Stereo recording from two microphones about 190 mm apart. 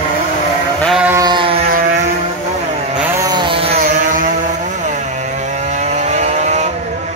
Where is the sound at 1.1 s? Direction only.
20° right (ahead or behind).